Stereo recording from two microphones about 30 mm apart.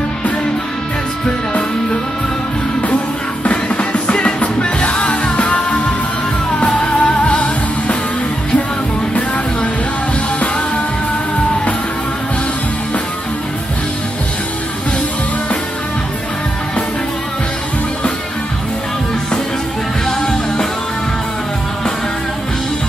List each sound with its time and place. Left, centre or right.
3.4 s music: left
6.8 s music: left
20.1 s music: left